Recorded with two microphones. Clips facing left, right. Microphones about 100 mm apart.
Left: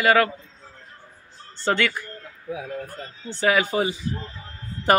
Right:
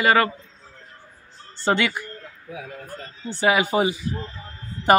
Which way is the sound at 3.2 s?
15° right (ahead or behind).